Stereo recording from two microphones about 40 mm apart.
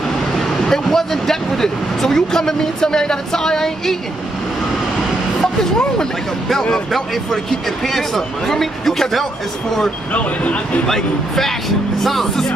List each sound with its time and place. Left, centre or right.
0.4 s speech: centre
6.9 s speech: centre
10.1 s speech: left
10.9 s speech: centre